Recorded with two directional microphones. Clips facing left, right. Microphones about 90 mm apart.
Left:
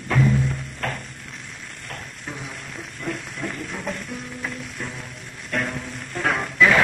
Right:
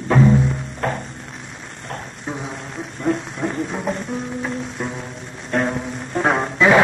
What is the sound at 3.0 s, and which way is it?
Music, 25° right (ahead or behind).